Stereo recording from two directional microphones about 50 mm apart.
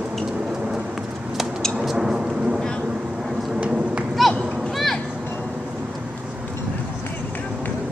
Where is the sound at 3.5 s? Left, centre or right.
Right.